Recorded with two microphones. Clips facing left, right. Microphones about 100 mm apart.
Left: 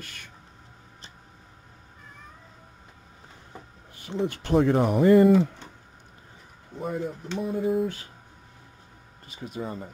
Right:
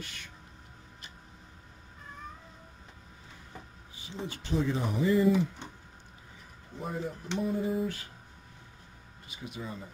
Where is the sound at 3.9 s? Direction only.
60° left (ahead or behind).